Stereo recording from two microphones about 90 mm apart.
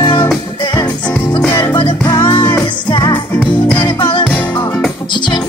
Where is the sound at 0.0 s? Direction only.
60° left (ahead or behind).